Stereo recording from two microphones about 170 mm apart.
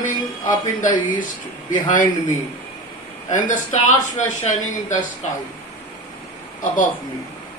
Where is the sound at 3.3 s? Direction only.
50° left (ahead or behind).